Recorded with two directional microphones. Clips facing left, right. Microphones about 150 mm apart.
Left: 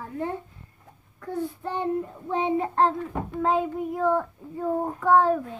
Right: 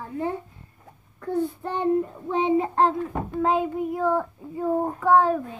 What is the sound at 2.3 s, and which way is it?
Child singing, 20° right (ahead or behind).